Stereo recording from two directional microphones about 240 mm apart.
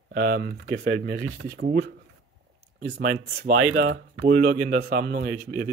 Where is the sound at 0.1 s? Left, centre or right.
Right.